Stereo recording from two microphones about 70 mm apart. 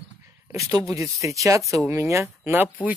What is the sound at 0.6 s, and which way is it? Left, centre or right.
Speech, right.